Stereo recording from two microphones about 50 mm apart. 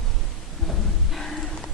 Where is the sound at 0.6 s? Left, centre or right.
Centre.